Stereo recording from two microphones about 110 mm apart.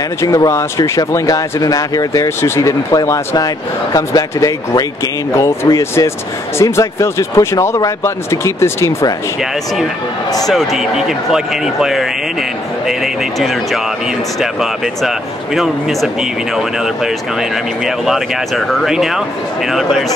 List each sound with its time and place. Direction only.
0.2 s speech: 25° left (ahead or behind)
10.4 s speech: centre (ahead or behind)